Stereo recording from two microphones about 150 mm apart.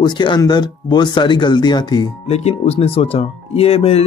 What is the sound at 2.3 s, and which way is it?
Speech, 45° left (ahead or behind).